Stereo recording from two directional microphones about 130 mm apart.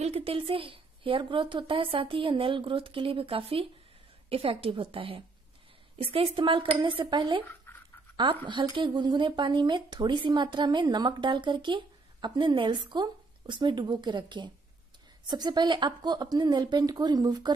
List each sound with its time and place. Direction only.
0.0 s a woman's voice: 50° right (ahead or behind)
7.7 s a sound: 15° left (ahead or behind)
8.5 s speech: 35° right (ahead or behind)